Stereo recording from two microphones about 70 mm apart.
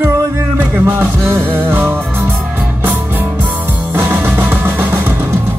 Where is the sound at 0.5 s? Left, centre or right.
Right.